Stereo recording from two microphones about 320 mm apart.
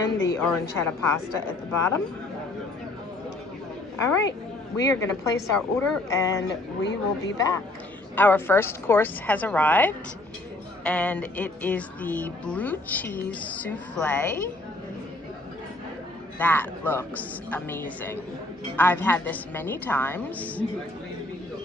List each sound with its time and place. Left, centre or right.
0.0 s speech: centre
4.7 s speech: centre
6.8 s speech: left
7.3 s speech: centre
16.3 s speech: centre